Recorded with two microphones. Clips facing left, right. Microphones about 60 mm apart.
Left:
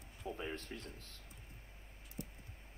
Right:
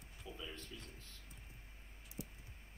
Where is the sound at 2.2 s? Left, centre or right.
Left.